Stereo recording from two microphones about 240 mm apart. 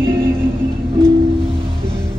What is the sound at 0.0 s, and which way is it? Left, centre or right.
Music, centre.